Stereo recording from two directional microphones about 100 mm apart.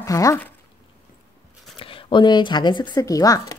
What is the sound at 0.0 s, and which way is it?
Speech, 35° left (ahead or behind).